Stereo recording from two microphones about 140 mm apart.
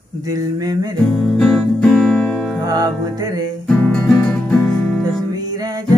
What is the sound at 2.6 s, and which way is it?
Music, 25° right (ahead or behind).